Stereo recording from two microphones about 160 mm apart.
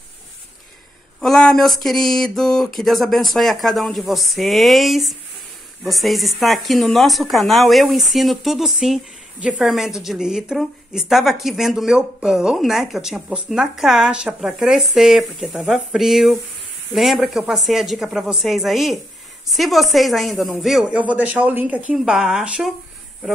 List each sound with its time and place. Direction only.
1.2 s speech: 5° left (ahead or behind)